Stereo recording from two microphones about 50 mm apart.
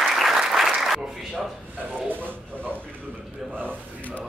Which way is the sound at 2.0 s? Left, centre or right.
Right.